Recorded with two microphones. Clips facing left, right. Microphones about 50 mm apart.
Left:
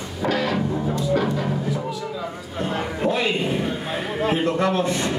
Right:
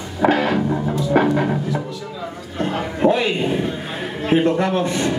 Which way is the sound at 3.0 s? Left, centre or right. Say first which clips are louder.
Right 5 dB; right.